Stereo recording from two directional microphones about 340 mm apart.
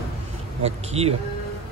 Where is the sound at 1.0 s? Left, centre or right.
Centre.